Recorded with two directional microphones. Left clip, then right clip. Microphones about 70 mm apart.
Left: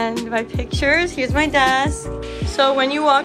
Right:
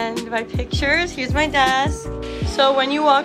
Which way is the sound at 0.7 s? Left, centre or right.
Centre.